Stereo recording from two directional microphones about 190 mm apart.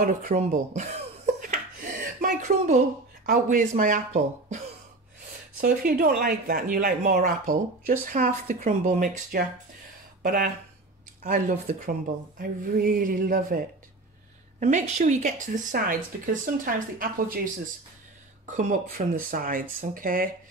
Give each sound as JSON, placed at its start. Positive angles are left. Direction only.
{"t": 0.0, "sound": "speech", "side_deg": -45}
{"t": 5.6, "sound": "speech", "side_deg": -50}
{"t": 14.6, "sound": "a woman's voice", "side_deg": -40}
{"t": 18.5, "sound": "speech", "side_deg": -40}